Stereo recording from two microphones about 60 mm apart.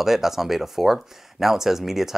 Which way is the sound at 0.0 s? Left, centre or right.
Centre.